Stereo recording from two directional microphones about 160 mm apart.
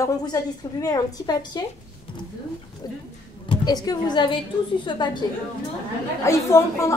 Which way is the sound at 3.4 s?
25° left (ahead or behind).